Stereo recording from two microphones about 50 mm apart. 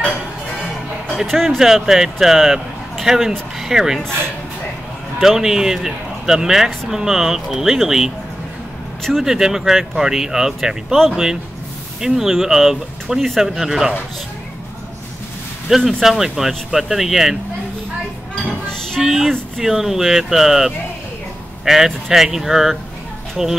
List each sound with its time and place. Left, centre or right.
1.1 s speech: centre
1.6 s speech: centre
5.2 s speech: centre
9.2 s speech: centre
13.2 s speech: centre
13.6 s speech: centre
16.0 s speech: centre
18.3 s train: centre
18.9 s speech: centre